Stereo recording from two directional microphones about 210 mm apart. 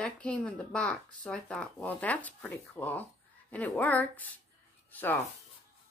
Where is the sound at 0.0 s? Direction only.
5° left (ahead or behind).